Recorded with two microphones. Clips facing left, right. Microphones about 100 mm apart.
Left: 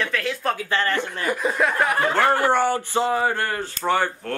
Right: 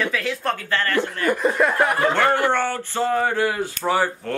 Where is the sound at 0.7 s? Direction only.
20° left (ahead or behind).